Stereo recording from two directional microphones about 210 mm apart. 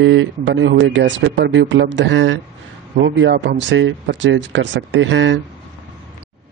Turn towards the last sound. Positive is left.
turn(degrees=-60)  # may be behind; listen again after turning